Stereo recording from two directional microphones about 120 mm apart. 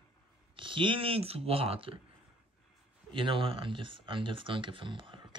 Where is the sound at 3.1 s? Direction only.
45° right (ahead or behind).